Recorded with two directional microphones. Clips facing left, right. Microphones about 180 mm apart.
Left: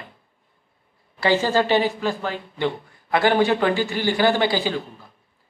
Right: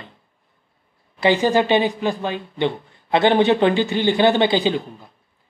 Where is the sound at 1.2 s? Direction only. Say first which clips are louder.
Right 3 dB; 20° right (ahead or behind).